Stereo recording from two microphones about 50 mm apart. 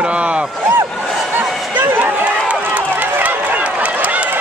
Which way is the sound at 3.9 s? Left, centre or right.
Right.